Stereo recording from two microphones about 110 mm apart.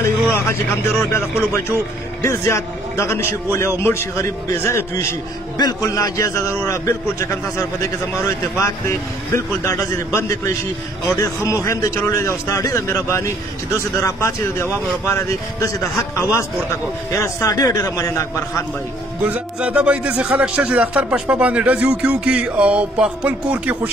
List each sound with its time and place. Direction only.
0.3 s a man's voice: 20° left (ahead or behind)
19.2 s a man's voice: 10° right (ahead or behind)